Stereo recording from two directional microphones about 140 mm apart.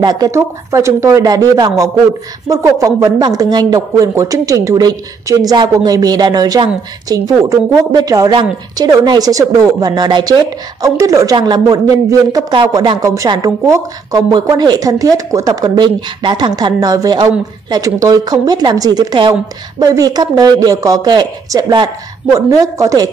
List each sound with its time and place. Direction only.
0.0 s speech: 25° right (ahead or behind)